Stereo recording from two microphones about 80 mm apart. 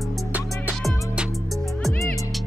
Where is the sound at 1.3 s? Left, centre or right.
Centre.